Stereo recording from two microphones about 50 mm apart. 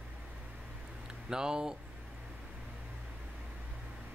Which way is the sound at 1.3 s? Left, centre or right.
Centre.